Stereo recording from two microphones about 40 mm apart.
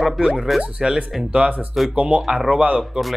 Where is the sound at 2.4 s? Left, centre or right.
Right.